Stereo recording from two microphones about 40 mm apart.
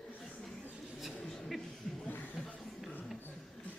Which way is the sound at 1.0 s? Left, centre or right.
Centre.